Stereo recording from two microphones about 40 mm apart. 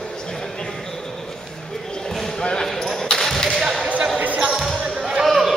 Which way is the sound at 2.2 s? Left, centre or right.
Centre.